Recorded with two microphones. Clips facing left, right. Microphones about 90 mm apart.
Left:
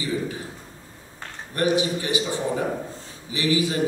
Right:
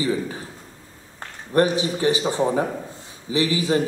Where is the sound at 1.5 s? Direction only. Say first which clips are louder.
Right 3 dB; 30° right (ahead or behind).